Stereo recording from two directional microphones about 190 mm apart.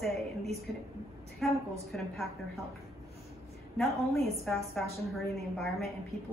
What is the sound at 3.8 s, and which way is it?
A woman's voice, centre (ahead or behind).